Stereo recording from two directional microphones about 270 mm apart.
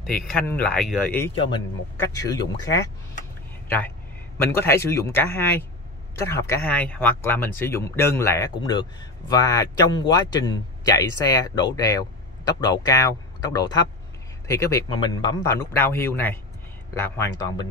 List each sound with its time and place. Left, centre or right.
0.0 s speech: centre